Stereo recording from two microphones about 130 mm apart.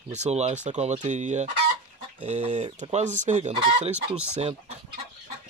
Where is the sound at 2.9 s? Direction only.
70° right (ahead or behind).